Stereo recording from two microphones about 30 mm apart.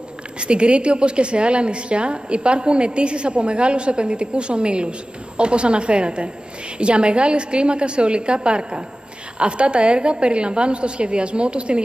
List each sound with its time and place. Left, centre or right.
0.4 s a woman's voice: right